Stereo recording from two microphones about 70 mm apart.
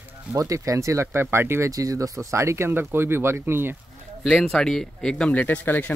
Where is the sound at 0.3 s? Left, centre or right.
Right.